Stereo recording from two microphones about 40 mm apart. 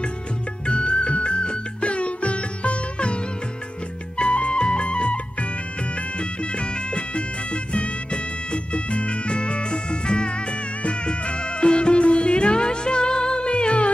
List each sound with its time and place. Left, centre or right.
0.7 s music: left